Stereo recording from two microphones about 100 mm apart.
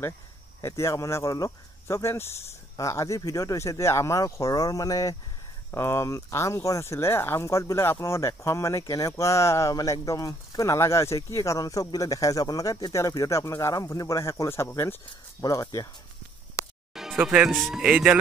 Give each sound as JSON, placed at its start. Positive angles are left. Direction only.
{"t": 0.6, "sound": "speech", "side_deg": 30}
{"t": 5.7, "sound": "speech", "side_deg": 25}
{"t": 15.4, "sound": "speech", "side_deg": 35}
{"t": 16.9, "sound": "music", "side_deg": -5}
{"t": 17.2, "sound": "speech", "side_deg": -10}